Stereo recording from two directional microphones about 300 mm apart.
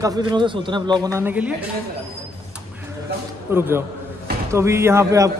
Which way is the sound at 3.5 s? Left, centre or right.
Centre.